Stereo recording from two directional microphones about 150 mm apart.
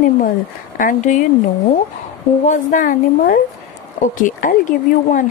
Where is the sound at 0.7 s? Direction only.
60° left (ahead or behind).